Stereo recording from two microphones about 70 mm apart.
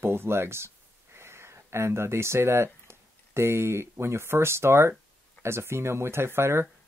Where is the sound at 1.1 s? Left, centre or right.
Right.